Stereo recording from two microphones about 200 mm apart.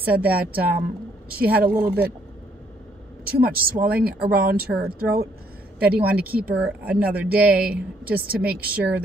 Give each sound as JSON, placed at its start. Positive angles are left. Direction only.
{"t": 0.0, "sound": "speech", "side_deg": -5}
{"t": 1.6, "sound": "speech", "side_deg": -50}
{"t": 3.3, "sound": "speech", "side_deg": -50}
{"t": 5.8, "sound": "speech", "side_deg": -5}